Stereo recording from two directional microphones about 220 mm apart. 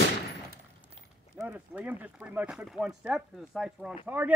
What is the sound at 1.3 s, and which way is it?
Speech, 5° right (ahead or behind).